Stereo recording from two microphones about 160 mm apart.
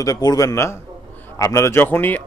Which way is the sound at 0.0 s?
25° left (ahead or behind).